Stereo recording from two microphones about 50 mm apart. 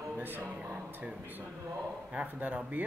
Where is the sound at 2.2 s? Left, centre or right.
Right.